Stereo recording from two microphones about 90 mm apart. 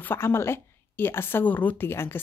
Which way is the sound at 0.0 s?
25° left (ahead or behind).